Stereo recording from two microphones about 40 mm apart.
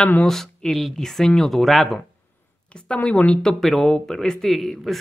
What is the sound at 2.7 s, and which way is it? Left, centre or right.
Speech, left.